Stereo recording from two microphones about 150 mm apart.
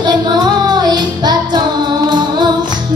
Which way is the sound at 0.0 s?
30° right (ahead or behind).